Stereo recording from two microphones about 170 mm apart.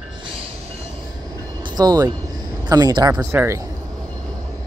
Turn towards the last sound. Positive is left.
turn(degrees=-15)  # may be behind; listen again after turning